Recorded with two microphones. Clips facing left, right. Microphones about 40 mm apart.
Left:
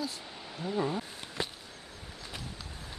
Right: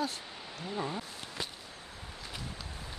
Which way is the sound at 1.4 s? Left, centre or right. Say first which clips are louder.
Left 4 dB; centre.